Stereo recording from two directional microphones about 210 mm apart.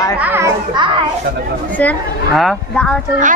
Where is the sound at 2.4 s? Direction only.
5° left (ahead or behind).